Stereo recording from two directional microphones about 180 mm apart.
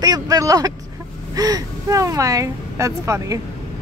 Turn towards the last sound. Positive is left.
turn(degrees=-15)  # may be behind; listen again after turning